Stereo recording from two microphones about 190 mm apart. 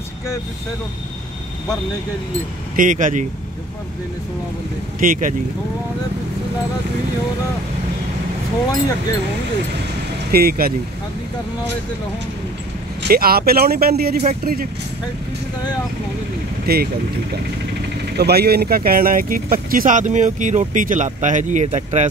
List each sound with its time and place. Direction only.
2.7 s speech: 45° right (ahead or behind)
5.0 s speech: 45° right (ahead or behind)
10.3 s speech: 55° right (ahead or behind)
13.1 s speech: 50° right (ahead or behind)
16.6 s speech: 55° right (ahead or behind)
18.1 s speech: 60° right (ahead or behind); by 22.1 s 40° right (ahead or behind)